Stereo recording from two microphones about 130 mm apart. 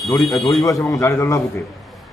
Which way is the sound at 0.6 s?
25° left (ahead or behind).